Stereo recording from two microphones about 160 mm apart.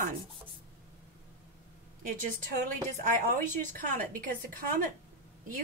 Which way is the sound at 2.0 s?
60° right (ahead or behind).